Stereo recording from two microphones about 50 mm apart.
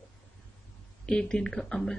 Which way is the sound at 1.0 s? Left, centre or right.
Centre.